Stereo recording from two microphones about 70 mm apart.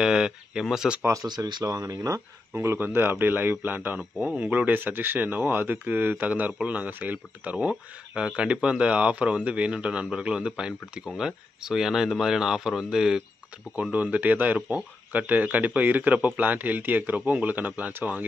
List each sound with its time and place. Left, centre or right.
0.0 s speech: centre
1.2 s speech: right
2.5 s speech: right; by 13.2 s centre
13.9 s speech: right